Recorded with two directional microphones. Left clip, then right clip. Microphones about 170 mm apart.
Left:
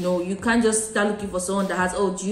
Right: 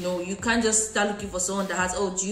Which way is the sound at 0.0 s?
5° right (ahead or behind).